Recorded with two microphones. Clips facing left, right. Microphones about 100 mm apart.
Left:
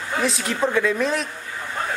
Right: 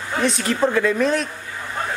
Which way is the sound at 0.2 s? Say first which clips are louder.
Right 3 dB; centre (ahead or behind).